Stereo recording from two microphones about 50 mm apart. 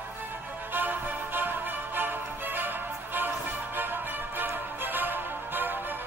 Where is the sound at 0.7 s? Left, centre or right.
Right.